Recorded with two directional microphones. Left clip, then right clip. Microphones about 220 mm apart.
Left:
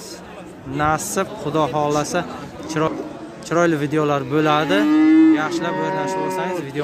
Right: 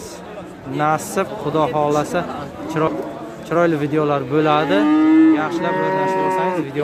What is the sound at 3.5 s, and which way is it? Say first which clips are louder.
A man's voice: right 1 dB; 10° left (ahead or behind).